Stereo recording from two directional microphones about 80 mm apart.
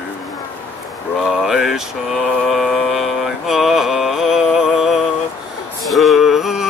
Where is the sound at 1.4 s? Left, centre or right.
Centre.